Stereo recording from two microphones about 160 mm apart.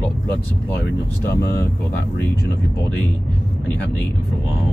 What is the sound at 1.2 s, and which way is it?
Speech, 15° left (ahead or behind).